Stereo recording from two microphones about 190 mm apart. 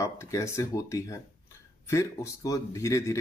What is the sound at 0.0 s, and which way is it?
Speech, 15° left (ahead or behind).